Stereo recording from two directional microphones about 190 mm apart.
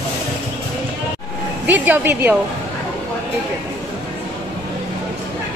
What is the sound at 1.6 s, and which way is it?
Speech, 10° right (ahead or behind).